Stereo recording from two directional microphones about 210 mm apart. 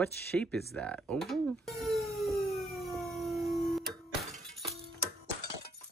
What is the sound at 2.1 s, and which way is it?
Siren, centre (ahead or behind).